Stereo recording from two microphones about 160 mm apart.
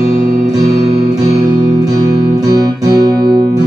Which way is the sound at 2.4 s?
25° right (ahead or behind).